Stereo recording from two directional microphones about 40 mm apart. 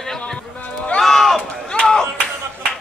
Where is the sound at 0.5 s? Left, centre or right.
Left.